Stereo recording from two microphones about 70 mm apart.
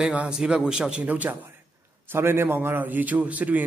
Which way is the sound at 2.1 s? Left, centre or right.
Right.